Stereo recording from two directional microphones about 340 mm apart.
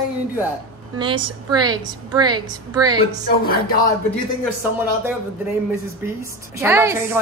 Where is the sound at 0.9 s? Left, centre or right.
Centre.